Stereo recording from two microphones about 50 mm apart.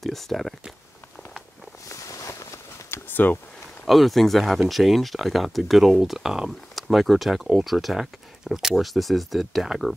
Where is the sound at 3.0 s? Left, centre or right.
Left.